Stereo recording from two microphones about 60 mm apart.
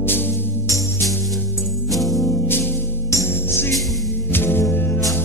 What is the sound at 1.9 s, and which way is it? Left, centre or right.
Music, centre.